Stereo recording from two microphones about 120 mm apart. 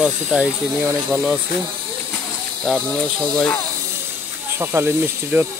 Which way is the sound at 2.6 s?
5° left (ahead or behind).